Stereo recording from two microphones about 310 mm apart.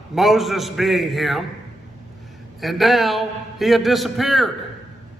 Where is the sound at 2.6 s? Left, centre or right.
Centre.